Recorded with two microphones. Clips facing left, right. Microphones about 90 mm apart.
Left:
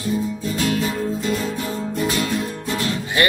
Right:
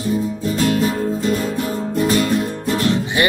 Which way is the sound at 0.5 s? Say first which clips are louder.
Right 4 dB; 40° right (ahead or behind).